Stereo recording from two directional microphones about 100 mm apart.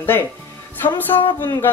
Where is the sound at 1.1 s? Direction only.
55° left (ahead or behind).